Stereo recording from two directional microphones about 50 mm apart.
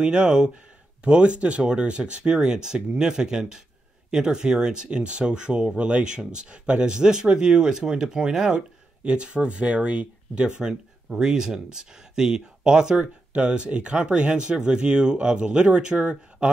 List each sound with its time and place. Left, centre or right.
0.0 s speech: right